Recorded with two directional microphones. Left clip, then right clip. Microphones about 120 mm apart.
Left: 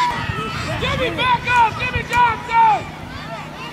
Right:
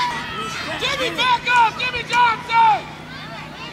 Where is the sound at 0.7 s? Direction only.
40° right (ahead or behind).